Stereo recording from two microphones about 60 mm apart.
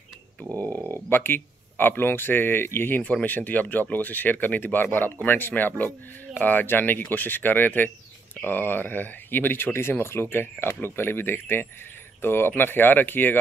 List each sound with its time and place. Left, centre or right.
0.7 s a sound: right
1.1 s speech: left
3.0 s speech: left